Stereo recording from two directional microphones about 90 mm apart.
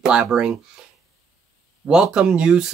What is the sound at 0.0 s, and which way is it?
Speech, 10° right (ahead or behind).